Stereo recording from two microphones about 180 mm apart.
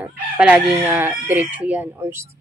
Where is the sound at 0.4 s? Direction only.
5° right (ahead or behind).